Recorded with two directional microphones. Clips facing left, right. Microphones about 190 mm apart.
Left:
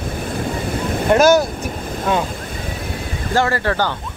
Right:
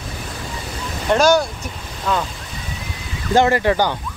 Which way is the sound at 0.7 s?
55° left (ahead or behind).